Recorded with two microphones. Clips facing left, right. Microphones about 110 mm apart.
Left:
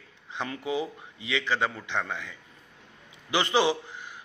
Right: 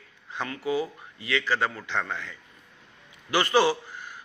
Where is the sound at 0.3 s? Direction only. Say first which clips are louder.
Right 2 dB; 20° left (ahead or behind).